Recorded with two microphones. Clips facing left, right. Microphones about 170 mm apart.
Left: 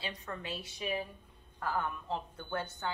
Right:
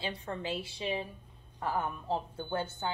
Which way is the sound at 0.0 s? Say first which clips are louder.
Right 4 dB; 30° right (ahead or behind).